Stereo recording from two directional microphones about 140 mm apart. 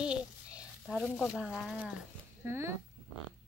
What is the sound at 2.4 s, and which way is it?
Speech, 20° right (ahead or behind).